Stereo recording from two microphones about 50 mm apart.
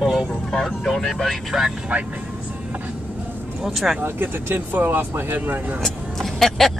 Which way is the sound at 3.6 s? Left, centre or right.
Centre.